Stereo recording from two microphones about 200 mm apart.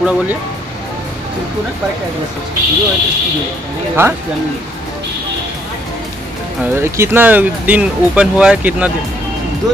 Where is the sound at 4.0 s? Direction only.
10° right (ahead or behind).